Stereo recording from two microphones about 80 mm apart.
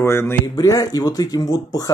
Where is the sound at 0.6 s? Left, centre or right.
Left.